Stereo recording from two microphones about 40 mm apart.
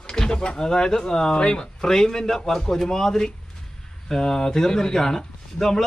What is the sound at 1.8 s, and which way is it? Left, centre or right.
Speech, centre.